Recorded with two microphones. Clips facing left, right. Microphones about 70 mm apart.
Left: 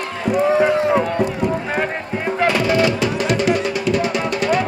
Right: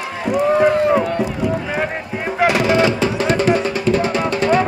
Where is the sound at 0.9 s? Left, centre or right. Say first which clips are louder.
Right 1 dB; centre.